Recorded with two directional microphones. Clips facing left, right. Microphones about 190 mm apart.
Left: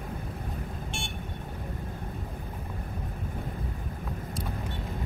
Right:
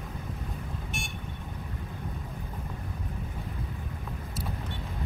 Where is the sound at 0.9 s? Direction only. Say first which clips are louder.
Even; 30° left (ahead or behind).